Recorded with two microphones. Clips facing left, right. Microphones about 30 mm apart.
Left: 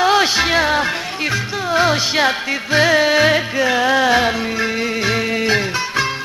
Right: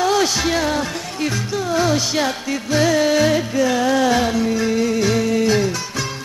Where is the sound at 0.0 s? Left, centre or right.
Left.